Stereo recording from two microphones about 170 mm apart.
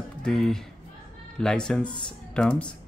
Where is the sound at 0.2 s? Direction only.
5° left (ahead or behind).